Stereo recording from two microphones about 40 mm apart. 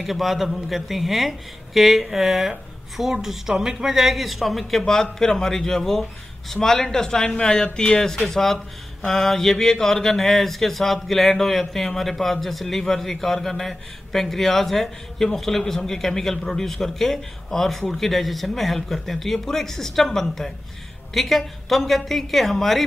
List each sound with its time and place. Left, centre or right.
0.0 s a man's voice: centre; by 8.0 s left
8.0 s a man's voice: centre